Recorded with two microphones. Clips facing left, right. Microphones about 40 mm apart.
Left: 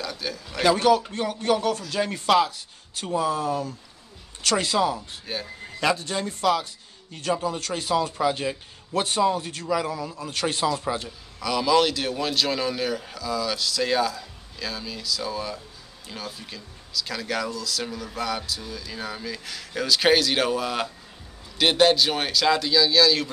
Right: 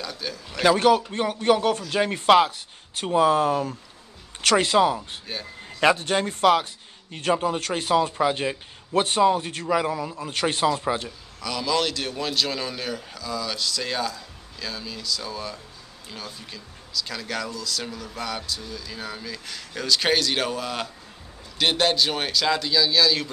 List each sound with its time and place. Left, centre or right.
0.0 s speech: centre
0.7 s a man's voice: right
3.2 s speech: right
4.6 s a man's voice: right
5.2 s speech: centre
5.8 s a man's voice: right; by 11.0 s centre
11.3 s speech: centre